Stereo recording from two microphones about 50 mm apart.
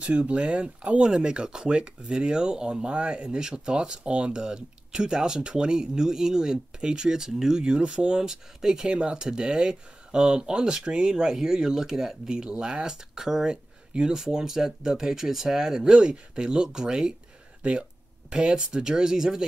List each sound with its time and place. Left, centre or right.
0.0 s speech: right